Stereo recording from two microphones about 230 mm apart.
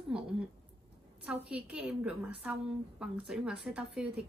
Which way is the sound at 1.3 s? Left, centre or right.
Centre.